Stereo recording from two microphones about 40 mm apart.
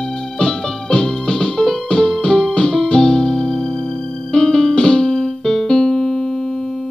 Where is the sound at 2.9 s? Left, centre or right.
Left.